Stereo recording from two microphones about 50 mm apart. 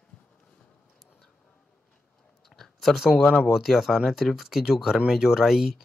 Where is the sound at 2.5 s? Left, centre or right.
Centre.